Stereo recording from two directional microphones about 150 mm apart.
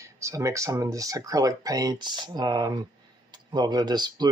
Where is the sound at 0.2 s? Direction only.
20° right (ahead or behind).